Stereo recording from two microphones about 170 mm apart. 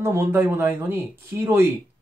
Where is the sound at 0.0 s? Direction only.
15° right (ahead or behind).